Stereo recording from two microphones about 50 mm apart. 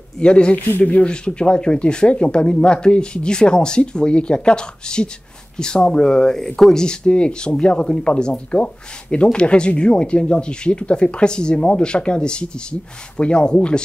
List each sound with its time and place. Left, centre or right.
0.2 s speech: left
0.7 s speech: left
1.0 s speech: centre